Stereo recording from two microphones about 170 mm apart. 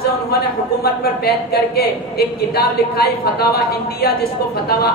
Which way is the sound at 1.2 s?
65° left (ahead or behind).